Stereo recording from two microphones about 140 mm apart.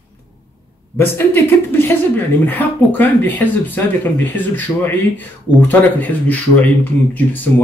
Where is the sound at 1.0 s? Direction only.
15° left (ahead or behind).